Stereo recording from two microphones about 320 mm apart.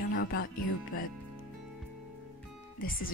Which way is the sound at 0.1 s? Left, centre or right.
Left.